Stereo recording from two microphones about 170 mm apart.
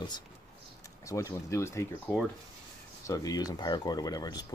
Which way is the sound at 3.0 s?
20° left (ahead or behind).